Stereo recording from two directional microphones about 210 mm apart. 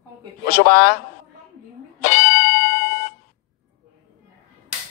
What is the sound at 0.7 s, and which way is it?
Speech, 45° left (ahead or behind).